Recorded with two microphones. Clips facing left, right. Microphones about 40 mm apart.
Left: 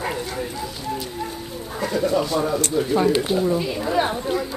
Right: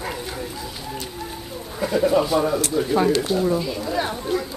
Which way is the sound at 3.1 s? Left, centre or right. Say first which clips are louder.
Even; centre.